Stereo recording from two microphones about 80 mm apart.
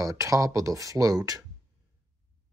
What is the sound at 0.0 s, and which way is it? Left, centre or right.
Speech, right.